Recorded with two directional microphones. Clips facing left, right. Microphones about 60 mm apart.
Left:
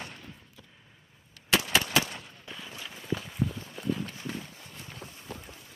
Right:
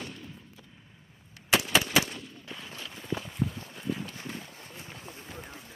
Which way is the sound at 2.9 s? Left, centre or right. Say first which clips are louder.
Left 1 dB; centre.